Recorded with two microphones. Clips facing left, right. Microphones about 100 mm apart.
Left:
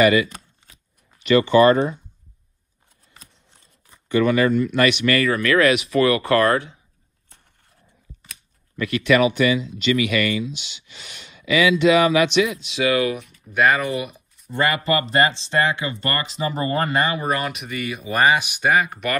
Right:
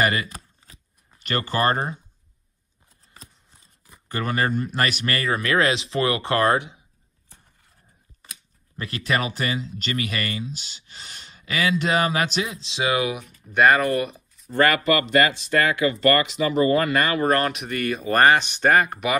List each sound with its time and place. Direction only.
0.0 s chopping: 40° right (ahead or behind)
1.2 s speech: 45° right (ahead or behind)
4.1 s a man's voice: 40° right (ahead or behind); by 6.8 s 20° right (ahead or behind)
8.7 s speech: 35° right (ahead or behind)
13.5 s speech: centre (ahead or behind)
14.8 s speech: 30° left (ahead or behind)
16.9 s speech: 20° left (ahead or behind)
17.5 s speech: centre (ahead or behind)